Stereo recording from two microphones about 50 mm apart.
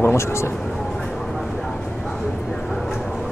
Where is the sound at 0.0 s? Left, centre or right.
Left.